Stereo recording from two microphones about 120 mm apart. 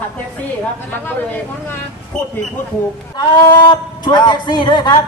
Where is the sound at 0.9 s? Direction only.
15° left (ahead or behind).